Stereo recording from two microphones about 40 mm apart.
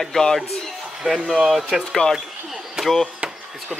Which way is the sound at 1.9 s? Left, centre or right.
Centre.